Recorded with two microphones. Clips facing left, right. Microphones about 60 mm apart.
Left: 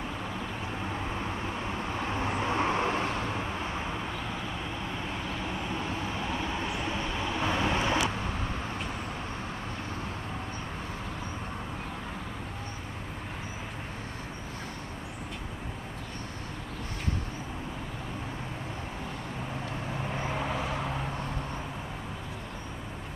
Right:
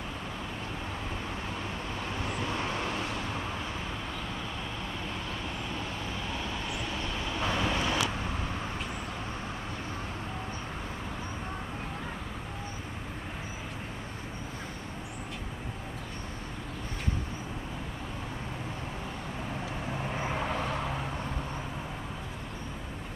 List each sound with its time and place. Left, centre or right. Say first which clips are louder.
1.8 s vehicle: left 4 dB; left
5.8 s vehicle: left 3 dB; centre
19.9 s vehicle: even; centre